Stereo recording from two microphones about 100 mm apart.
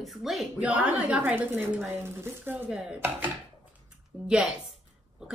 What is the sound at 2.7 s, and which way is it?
Dishes, 10° right (ahead or behind).